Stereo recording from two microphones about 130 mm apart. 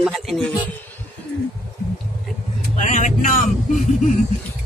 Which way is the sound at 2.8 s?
70° left (ahead or behind).